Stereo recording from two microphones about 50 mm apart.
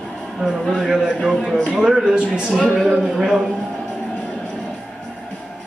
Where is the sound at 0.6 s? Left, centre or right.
Centre.